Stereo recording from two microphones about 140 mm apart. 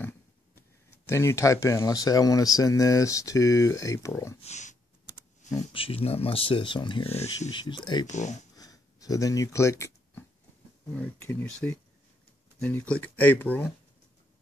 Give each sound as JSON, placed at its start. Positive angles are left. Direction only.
{"t": 1.0, "sound": "speech", "side_deg": 20}
{"t": 4.4, "sound": "speech", "side_deg": 55}
{"t": 5.4, "sound": "a sound", "side_deg": 55}
{"t": 5.7, "sound": "speech", "side_deg": 40}
{"t": 8.1, "sound": "speech", "side_deg": 55}
{"t": 8.5, "sound": "a sound", "side_deg": 25}
{"t": 11.0, "sound": "speech", "side_deg": 10}